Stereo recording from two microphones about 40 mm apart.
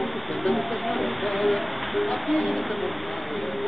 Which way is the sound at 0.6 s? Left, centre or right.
Centre.